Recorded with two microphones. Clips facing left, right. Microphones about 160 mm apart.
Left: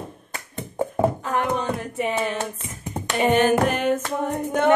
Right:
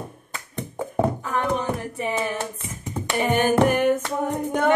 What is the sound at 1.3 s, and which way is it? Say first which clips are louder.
Music: left 1 dB; 65° left (ahead or behind).